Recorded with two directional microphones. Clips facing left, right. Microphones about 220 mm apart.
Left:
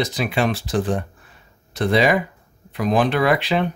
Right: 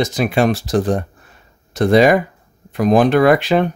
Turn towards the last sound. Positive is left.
turn(degrees=-45)  # may be behind; listen again after turning